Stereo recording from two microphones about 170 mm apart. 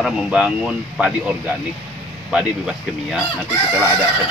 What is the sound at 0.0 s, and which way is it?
Speech, 5° right (ahead or behind).